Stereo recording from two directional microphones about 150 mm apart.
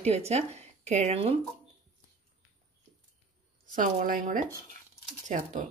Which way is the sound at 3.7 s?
60° right (ahead or behind).